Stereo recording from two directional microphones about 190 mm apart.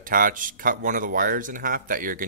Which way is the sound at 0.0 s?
45° right (ahead or behind).